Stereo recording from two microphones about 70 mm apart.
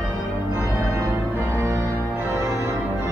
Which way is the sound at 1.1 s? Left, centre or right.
Right.